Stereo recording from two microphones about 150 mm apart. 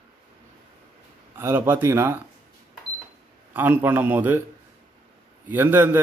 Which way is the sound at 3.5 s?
10° right (ahead or behind).